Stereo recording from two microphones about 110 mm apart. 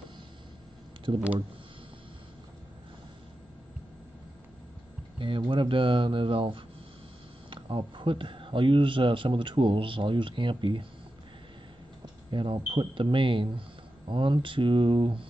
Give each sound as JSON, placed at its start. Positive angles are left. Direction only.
{"t": 1.1, "sound": "speech", "side_deg": -45}
{"t": 5.2, "sound": "speech", "side_deg": -50}
{"t": 12.3, "sound": "speech", "side_deg": -50}